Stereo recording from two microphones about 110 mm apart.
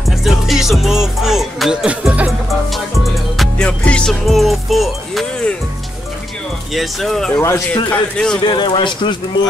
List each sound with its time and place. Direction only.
0.0 s music: centre (ahead or behind)
6.7 s music: centre (ahead or behind)
7.7 s a man's voice: 10° left (ahead or behind)
8.5 s speech: 45° left (ahead or behind)